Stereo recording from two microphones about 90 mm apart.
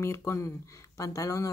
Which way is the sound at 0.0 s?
35° left (ahead or behind).